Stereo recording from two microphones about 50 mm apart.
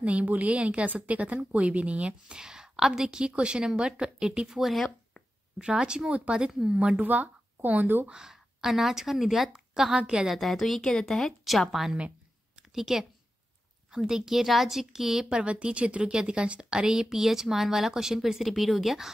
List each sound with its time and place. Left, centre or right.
0.0 s a woman's voice: right
4.6 s speech: centre
5.6 s a woman's voice: centre
7.0 s speech: right
8.1 s speech: centre
10.3 s a woman's voice: centre
14.0 s speech: centre
15.3 s speech: right; by 19.0 s centre